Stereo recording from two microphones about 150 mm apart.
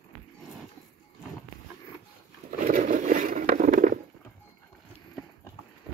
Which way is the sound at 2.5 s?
60° right (ahead or behind).